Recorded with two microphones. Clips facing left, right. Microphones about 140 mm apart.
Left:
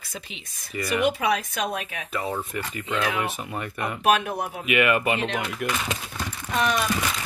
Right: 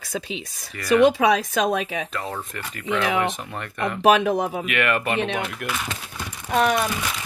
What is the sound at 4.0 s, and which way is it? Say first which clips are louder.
Speech: right 5 dB; 90° right.